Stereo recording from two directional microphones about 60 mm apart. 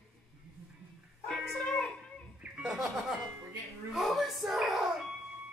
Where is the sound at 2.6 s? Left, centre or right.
Centre.